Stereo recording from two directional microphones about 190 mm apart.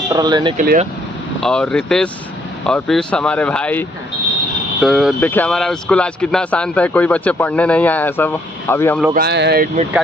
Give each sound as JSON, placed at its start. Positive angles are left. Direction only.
{"t": 0.1, "sound": "speech", "side_deg": -20}
{"t": 0.6, "sound": "speech", "side_deg": -45}
{"t": 1.4, "sound": "speech", "side_deg": 5}
{"t": 4.8, "sound": "a man's voice", "side_deg": 0}
{"t": 9.1, "sound": "speech", "side_deg": -60}